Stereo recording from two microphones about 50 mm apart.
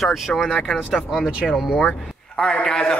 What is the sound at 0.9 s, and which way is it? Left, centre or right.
Speech, centre.